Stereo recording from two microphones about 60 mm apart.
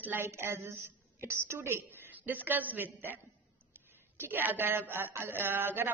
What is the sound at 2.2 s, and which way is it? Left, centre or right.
Speech, right.